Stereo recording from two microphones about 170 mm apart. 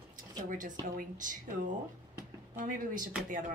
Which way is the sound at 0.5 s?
50° right (ahead or behind).